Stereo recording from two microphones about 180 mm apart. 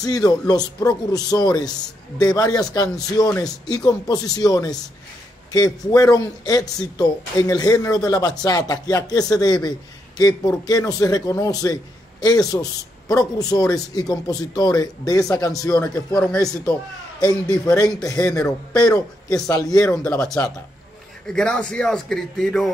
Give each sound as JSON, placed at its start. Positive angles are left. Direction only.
{"t": 0.0, "sound": "speech", "side_deg": 20}
{"t": 3.3, "sound": "speech", "side_deg": 5}
{"t": 3.6, "sound": "speech", "side_deg": 20}
{"t": 16.2, "sound": "speech", "side_deg": 5}
{"t": 19.4, "sound": "speech", "side_deg": 20}
{"t": 20.1, "sound": "speech", "side_deg": 5}